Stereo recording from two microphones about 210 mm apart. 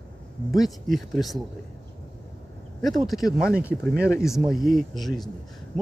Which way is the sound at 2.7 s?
Centre (ahead or behind).